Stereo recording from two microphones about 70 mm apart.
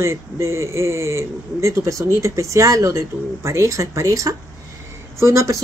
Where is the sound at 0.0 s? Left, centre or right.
Right.